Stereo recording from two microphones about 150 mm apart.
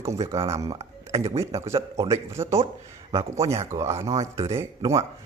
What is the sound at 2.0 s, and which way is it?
Speech, 20° right (ahead or behind).